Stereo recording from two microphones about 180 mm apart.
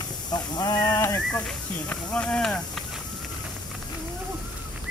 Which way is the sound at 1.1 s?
5° left (ahead or behind).